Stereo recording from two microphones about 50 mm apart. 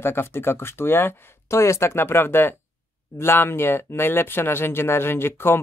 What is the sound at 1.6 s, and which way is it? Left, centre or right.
Speech, left.